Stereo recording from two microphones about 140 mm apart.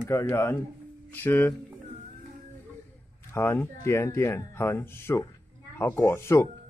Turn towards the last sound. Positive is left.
turn(degrees=20)  # may be behind; listen again after turning